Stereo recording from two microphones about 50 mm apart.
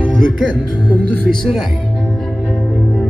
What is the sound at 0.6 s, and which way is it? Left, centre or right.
Speech, left.